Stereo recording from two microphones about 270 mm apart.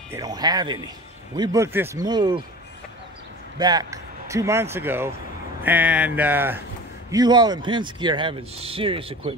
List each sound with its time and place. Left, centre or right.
0.1 s speech: centre
3.5 s speech: centre